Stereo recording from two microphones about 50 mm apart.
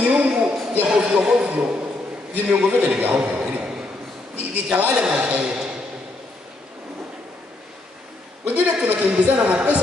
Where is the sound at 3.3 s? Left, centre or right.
Centre.